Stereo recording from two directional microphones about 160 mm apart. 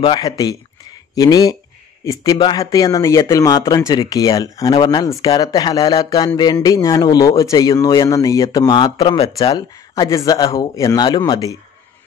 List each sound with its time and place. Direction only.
0.0 s speech: 30° left (ahead or behind)
10.0 s speech: 20° left (ahead or behind)